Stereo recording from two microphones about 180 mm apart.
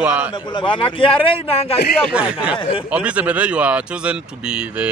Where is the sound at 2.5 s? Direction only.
30° left (ahead or behind).